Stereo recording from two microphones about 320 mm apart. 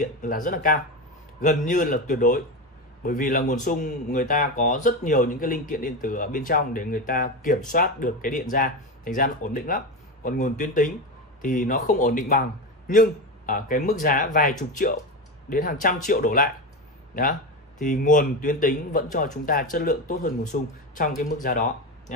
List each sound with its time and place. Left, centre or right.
0.0 s speech: left